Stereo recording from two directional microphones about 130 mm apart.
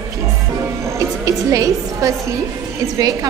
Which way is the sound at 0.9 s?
25° right (ahead or behind).